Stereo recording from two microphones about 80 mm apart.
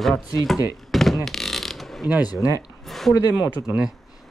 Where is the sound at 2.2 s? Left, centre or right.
Left.